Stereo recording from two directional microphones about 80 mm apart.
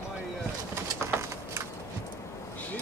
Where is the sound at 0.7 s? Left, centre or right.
Right.